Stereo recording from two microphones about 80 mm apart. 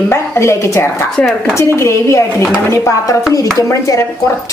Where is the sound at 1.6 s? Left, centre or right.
Left.